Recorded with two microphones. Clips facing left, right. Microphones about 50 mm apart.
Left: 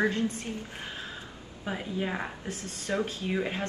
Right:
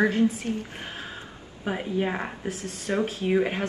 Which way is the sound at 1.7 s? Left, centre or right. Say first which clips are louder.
Right 5 dB; right.